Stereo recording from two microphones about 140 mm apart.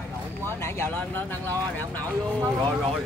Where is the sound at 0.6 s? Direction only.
15° left (ahead or behind).